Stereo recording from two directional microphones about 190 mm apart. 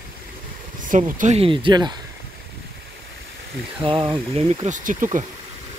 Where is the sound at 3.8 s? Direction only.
25° right (ahead or behind); by 5.2 s 45° right (ahead or behind).